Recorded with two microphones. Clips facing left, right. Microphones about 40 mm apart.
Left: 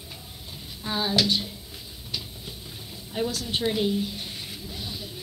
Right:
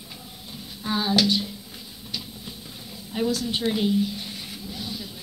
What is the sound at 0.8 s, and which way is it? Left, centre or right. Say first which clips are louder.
Speech: right 2 dB; centre.